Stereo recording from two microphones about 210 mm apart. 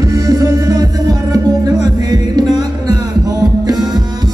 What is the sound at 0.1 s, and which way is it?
Music, 15° right (ahead or behind).